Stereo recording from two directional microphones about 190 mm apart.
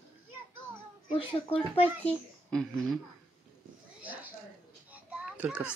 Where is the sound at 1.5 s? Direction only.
30° left (ahead or behind).